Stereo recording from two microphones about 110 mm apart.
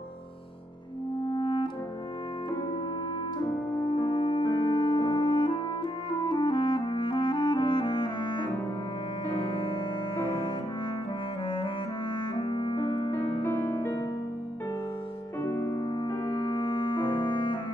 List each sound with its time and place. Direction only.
1.2 s music: 45° left (ahead or behind)
3.9 s music: 45° left (ahead or behind)
10.2 s cello: 50° left (ahead or behind)
11.4 s clarinet: 50° left (ahead or behind)
12.4 s piano: 50° left (ahead or behind)
13.1 s music: 20° left (ahead or behind)
15.4 s music: 20° left (ahead or behind)
15.8 s music: 40° left (ahead or behind)